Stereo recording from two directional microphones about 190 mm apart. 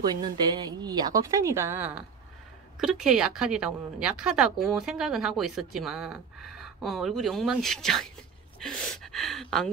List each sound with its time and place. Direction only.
0.0 s a woman's voice: 20° right (ahead or behind); by 9.7 s centre (ahead or behind)